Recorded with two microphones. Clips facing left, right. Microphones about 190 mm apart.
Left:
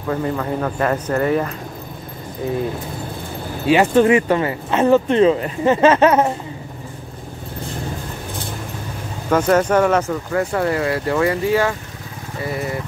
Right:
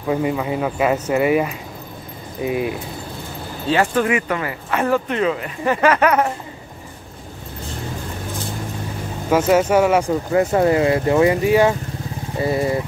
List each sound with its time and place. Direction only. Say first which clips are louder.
0.1 s speech: right 1 dB; 10° right (ahead or behind)
3.6 s speech: left 5 dB; 20° left (ahead or behind)
9.3 s speech: even; 5° right (ahead or behind); by 12.7 s 25° right (ahead or behind)